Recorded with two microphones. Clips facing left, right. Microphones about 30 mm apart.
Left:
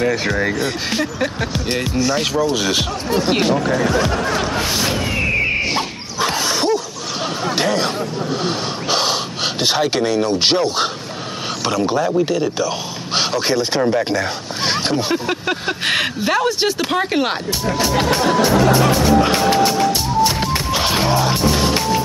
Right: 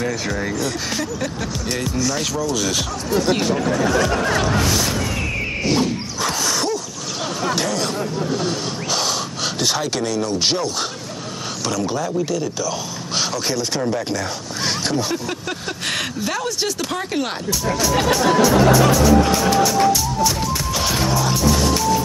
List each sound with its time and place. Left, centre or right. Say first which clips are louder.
0.0 s speech: left 5 dB; left
4.6 s music: left 1 dB; left
7.5 s speech: left 7 dB; left
8.8 s gasp: left 4 dB; left
11.6 s a sound: left 5 dB; left